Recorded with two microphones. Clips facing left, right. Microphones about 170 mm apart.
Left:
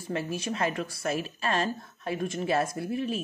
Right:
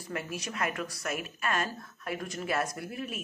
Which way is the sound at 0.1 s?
30° left (ahead or behind).